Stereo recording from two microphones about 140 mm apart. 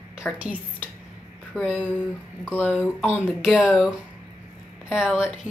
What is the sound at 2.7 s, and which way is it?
Speech, centre (ahead or behind).